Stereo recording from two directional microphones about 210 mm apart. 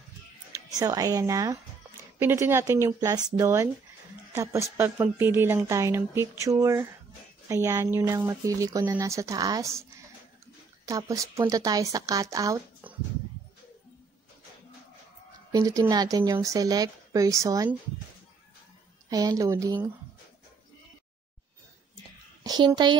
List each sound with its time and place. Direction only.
0.7 s a woman's voice: 15° right (ahead or behind)
10.9 s a woman's voice: 15° right (ahead or behind)
15.5 s a woman's voice: 15° right (ahead or behind)
19.0 s a woman's voice: 15° right (ahead or behind)
22.4 s a woman's voice: 20° right (ahead or behind)